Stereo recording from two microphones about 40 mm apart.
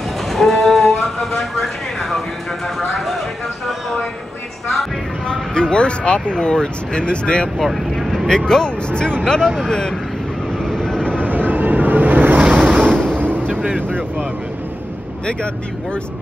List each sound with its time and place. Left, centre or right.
0.3 s a sound: centre
5.3 s speech: left
7.5 s vehicle: centre
8.3 s speech: centre
10.6 s vehicle: centre
11.2 s ocean: right
12.9 s a sound: left
13.5 s vehicle: right